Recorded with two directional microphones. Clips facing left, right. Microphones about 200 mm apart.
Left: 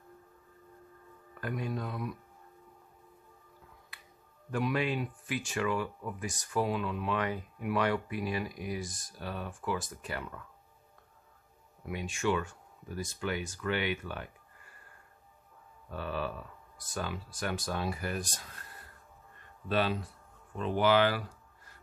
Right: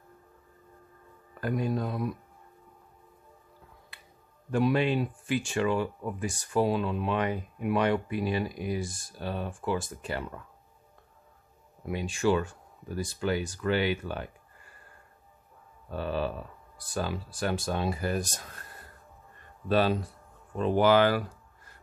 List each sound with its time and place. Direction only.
1.4 s speech: 35° right (ahead or behind)
4.5 s speech: 30° right (ahead or behind)
11.8 s speech: 30° right (ahead or behind)
15.9 s speech: 30° right (ahead or behind)
19.7 s speech: 40° right (ahead or behind)